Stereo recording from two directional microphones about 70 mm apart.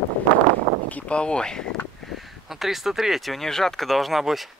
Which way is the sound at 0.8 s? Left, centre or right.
Centre.